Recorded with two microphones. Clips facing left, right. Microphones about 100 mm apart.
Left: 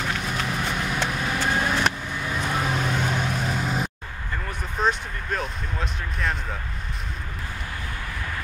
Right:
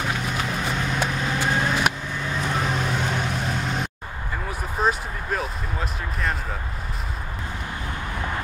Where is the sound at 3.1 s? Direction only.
Centre (ahead or behind).